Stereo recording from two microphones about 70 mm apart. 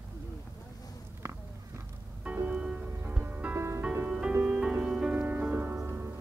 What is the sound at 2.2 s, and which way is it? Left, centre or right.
Music, right.